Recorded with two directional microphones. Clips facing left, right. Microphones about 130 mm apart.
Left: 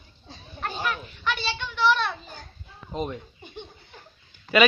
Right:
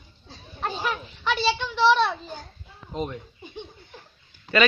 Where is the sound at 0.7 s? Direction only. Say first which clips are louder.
Right 1 dB; centre (ahead or behind).